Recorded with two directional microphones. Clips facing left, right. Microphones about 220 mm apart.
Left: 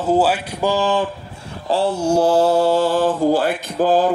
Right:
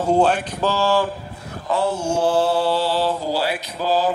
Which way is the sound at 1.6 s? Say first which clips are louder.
Left 3 dB; 30° left (ahead or behind).